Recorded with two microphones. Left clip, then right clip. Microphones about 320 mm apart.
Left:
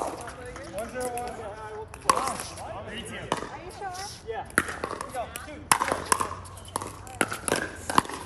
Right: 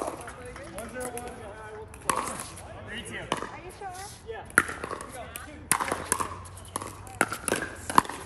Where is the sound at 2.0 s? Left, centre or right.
Centre.